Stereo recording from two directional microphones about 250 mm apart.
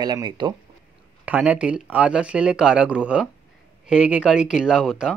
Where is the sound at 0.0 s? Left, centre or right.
Centre.